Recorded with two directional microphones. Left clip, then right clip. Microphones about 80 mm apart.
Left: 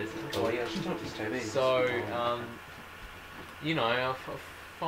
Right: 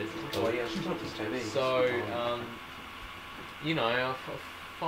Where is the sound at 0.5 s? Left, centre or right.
Centre.